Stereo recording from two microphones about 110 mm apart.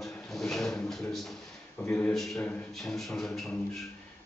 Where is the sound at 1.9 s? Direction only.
15° left (ahead or behind).